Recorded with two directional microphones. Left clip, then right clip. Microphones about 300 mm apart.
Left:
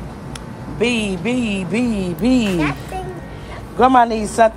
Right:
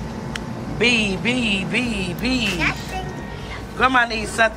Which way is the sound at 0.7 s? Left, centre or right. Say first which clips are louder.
Right 1 dB; centre.